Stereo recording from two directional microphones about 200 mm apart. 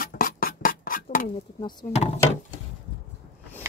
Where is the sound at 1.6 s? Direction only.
20° left (ahead or behind).